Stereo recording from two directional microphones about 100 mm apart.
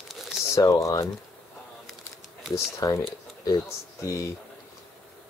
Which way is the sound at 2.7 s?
30° left (ahead or behind).